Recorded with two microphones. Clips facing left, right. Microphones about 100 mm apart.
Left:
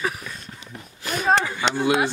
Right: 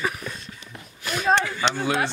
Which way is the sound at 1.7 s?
10° left (ahead or behind).